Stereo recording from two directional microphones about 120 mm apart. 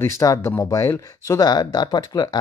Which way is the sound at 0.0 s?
30° left (ahead or behind).